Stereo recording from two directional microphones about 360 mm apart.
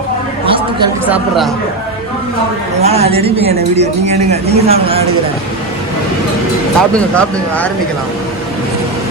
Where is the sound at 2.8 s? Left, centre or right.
Centre.